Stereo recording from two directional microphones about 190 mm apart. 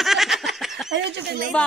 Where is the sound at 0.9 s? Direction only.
60° right (ahead or behind).